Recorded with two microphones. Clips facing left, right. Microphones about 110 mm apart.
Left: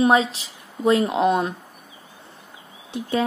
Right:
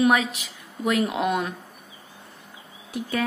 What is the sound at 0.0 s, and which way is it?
A woman's voice, 30° left (ahead or behind).